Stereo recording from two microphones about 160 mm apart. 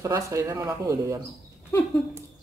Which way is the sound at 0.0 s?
20° right (ahead or behind).